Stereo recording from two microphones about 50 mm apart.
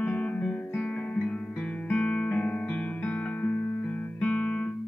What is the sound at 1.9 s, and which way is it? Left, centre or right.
Music, left.